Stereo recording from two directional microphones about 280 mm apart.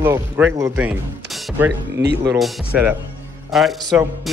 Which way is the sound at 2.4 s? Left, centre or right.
Centre.